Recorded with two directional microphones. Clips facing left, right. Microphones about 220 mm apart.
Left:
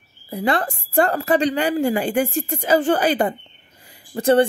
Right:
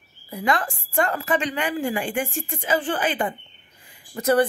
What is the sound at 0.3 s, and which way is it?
A woman's voice, 35° left (ahead or behind).